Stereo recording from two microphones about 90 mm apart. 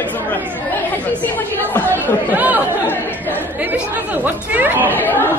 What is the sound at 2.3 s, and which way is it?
Chatter, 20° right (ahead or behind).